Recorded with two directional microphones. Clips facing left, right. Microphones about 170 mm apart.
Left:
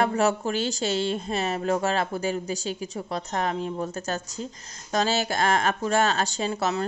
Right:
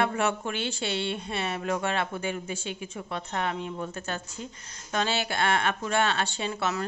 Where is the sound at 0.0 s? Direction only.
40° left (ahead or behind).